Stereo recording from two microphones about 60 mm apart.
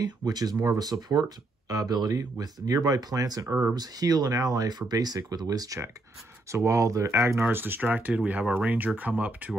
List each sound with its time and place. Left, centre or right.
0.0 s speech: right
6.5 s speech: right
7.5 s speech: right